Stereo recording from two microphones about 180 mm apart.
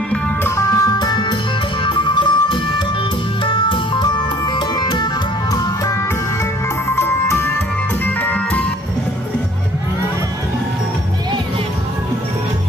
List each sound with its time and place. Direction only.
0.1 s music: 15° left (ahead or behind)
7.0 s music: 15° left (ahead or behind)